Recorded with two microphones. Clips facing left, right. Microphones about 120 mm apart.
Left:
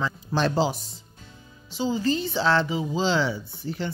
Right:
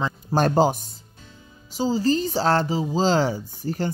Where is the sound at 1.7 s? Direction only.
40° right (ahead or behind).